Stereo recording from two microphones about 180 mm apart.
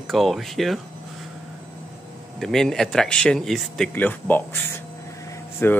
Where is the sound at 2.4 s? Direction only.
Centre (ahead or behind).